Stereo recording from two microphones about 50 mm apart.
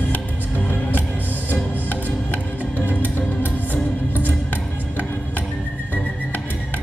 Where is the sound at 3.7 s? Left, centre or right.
Right.